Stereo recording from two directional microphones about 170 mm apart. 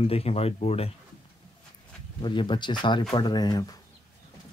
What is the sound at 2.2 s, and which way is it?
Speech, 30° left (ahead or behind).